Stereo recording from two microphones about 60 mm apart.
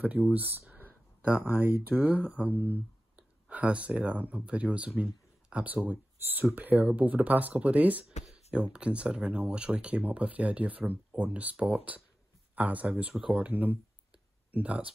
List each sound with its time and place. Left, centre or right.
0.0 s speech: right
0.7 s a sound: right
1.4 s speech: right
3.2 s speech: right